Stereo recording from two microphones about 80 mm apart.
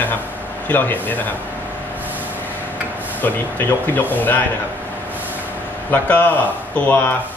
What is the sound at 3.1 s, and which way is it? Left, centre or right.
Speech, left.